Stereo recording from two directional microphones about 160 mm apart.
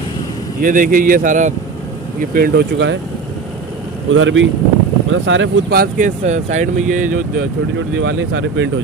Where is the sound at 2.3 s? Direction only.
80° right.